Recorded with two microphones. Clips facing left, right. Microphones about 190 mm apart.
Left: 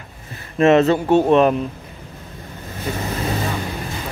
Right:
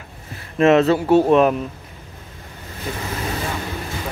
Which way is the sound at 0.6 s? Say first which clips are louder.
Left 1 dB; centre (ahead or behind).